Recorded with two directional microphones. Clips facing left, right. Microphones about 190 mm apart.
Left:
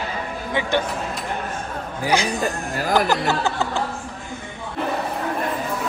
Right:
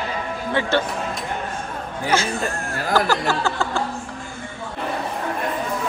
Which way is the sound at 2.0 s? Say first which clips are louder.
Left 1 dB; 15° left (ahead or behind).